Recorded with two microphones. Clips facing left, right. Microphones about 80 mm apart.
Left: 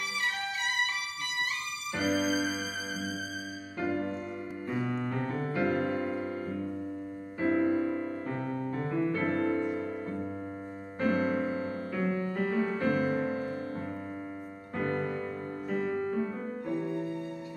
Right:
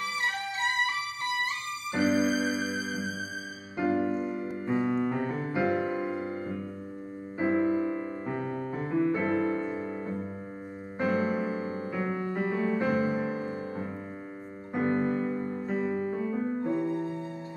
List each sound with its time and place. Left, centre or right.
0.2 s music: right
3.7 s music: centre
4.6 s piano: right
7.3 s music: centre
16.6 s music: right